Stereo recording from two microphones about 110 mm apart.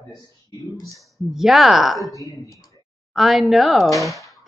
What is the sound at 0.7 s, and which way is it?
Speech, 30° left (ahead or behind).